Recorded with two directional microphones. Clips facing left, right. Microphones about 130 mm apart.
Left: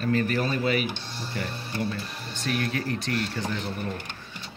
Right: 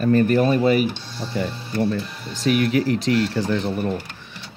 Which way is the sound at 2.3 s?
90° right.